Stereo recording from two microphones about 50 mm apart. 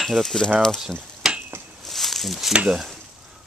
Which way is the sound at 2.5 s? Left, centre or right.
Centre.